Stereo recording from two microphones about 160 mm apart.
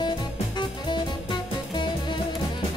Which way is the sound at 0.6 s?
30° left (ahead or behind).